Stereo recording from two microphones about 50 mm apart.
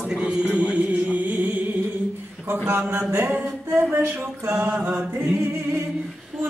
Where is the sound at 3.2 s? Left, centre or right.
Right.